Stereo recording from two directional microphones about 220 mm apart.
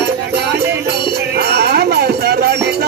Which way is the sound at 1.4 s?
50° right (ahead or behind).